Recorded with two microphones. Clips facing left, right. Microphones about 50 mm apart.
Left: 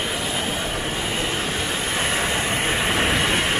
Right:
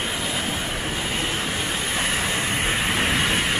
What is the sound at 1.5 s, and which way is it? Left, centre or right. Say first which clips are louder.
Vehicle: left 1 dB; centre.